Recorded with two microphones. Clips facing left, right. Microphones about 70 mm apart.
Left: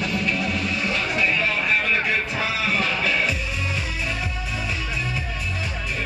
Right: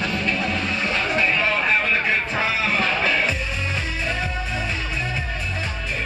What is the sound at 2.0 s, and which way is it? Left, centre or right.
Music, right.